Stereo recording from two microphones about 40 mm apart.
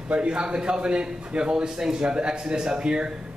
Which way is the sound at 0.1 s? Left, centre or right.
Right.